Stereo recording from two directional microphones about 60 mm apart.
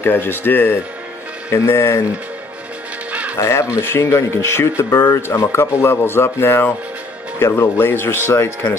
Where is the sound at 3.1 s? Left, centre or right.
Right.